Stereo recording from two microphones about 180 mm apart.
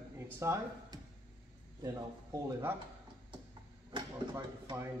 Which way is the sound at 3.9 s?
25° right (ahead or behind).